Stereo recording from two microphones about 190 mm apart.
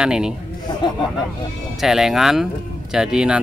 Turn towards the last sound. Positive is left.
turn(degrees=-5)  # may be behind; listen again after turning